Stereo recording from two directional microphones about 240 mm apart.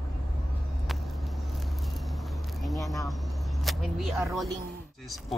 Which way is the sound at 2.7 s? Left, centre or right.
Centre.